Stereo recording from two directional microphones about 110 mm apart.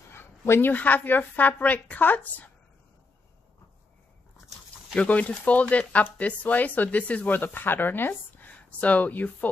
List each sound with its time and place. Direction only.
0.1 s speech: 20° left (ahead or behind)
4.9 s speech: 10° left (ahead or behind)